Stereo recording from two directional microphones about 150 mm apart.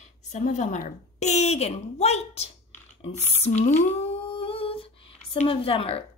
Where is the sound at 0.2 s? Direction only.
50° left (ahead or behind).